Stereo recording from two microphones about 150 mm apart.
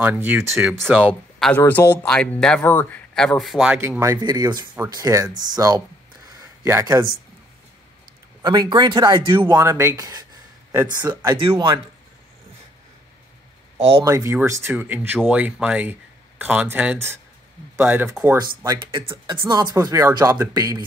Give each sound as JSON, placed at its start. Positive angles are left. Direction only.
{"t": 0.0, "sound": "speech", "side_deg": -10}
{"t": 1.0, "sound": "speech", "side_deg": 10}
{"t": 4.2, "sound": "speech", "side_deg": -30}
{"t": 8.4, "sound": "speech", "side_deg": -30}
{"t": 13.7, "sound": "speech", "side_deg": -35}
{"t": 14.0, "sound": "speech", "side_deg": -20}
{"t": 18.9, "sound": "speech", "side_deg": -35}